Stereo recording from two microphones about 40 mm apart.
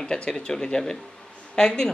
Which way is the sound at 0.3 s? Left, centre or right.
Centre.